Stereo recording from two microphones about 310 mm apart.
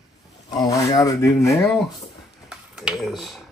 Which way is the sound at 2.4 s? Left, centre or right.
Centre.